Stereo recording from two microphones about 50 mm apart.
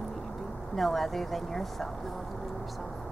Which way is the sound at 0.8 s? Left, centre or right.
Centre.